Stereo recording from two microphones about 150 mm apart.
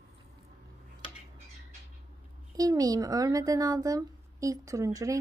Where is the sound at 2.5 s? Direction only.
25° right (ahead or behind).